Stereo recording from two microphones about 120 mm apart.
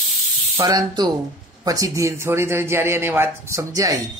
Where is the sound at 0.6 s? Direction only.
35° right (ahead or behind).